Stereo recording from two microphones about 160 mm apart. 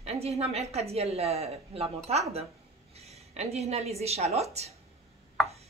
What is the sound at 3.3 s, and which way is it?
A man's voice, 40° right (ahead or behind).